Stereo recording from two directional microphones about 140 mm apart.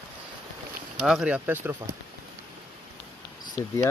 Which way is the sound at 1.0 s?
5° right (ahead or behind).